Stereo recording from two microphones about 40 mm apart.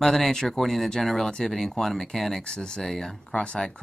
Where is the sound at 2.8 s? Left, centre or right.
Centre.